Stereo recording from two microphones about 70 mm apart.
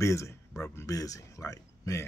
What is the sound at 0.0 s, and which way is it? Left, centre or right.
Speech, left.